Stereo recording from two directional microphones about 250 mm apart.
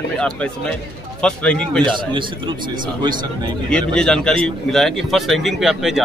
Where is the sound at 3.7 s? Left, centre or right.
Centre.